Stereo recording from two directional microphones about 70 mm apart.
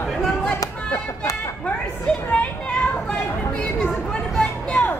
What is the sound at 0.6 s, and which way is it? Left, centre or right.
Speech, left.